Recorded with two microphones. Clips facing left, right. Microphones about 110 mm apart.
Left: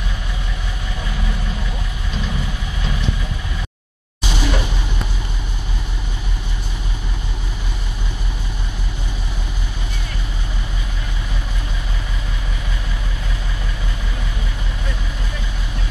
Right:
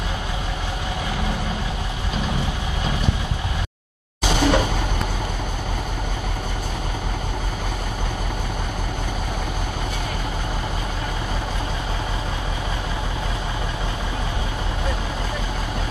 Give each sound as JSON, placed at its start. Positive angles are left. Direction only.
{"t": 4.2, "sound": "music", "side_deg": -50}